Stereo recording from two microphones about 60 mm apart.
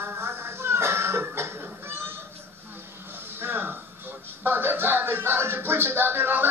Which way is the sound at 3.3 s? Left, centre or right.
Right.